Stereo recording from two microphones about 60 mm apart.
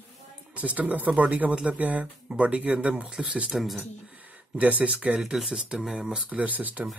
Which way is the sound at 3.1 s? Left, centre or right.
Centre.